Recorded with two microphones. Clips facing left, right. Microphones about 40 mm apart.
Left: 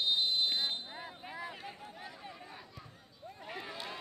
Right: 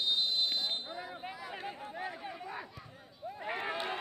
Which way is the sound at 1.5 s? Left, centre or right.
Centre.